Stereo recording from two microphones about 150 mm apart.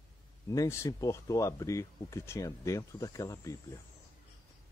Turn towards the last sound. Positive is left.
turn(degrees=20)  # may be behind; listen again after turning